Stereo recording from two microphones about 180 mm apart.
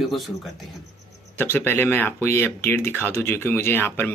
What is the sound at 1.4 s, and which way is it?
Speech, 10° left (ahead or behind).